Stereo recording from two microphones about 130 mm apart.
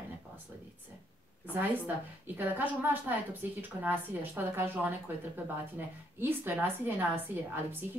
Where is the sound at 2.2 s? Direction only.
15° right (ahead or behind).